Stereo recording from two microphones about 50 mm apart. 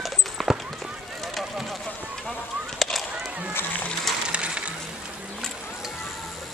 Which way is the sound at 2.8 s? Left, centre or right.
Centre.